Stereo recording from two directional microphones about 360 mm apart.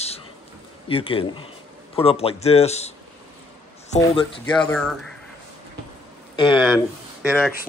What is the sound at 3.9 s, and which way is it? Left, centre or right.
Speech, centre.